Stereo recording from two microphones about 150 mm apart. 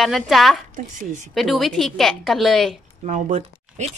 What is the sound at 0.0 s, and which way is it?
Speech, centre (ahead or behind).